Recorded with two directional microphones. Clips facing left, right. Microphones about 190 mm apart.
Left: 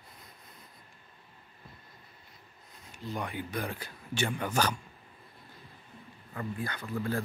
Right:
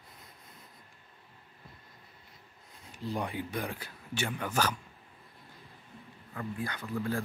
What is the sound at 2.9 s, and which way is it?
Speech, 35° right (ahead or behind).